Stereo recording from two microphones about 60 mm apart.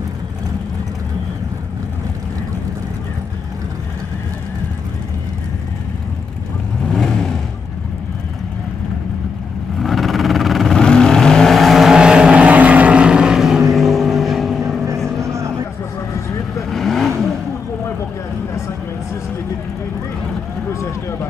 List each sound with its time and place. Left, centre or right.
6.8 s vehicle: centre
9.8 s vehicle: centre
10.7 s vehicle: centre
11.9 s vehicle: centre
15.2 s a sound: right
16.7 s vehicle: centre
20.8 s a sound: left